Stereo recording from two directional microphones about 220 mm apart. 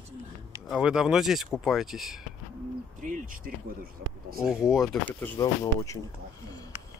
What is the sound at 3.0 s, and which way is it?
Speech, 35° right (ahead or behind).